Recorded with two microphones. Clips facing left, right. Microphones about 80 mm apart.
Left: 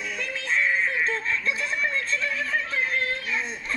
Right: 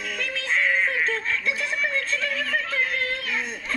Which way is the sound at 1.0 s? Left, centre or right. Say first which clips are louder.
Right 1 dB; left.